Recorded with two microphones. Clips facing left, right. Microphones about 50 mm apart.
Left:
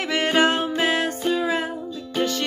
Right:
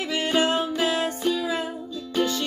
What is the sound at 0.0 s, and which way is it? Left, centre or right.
Music, left.